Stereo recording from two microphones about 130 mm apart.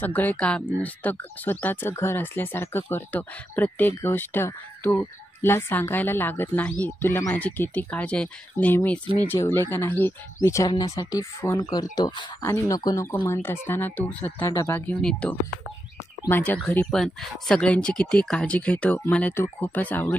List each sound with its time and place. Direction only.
0.0 s speech: 15° left (ahead or behind)
14.4 s speech: 25° left (ahead or behind)